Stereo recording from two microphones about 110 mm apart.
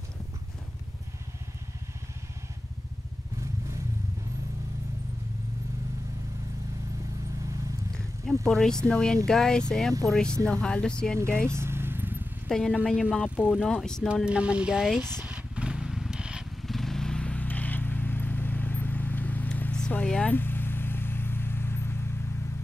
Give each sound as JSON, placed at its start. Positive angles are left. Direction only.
{"t": 8.3, "sound": "speech", "side_deg": 5}
{"t": 11.4, "sound": "vehicle", "side_deg": -25}
{"t": 12.4, "sound": "speech", "side_deg": 5}
{"t": 14.2, "sound": "speech", "side_deg": -10}
{"t": 15.2, "sound": "vehicle", "side_deg": -10}
{"t": 20.3, "sound": "vehicle", "side_deg": 20}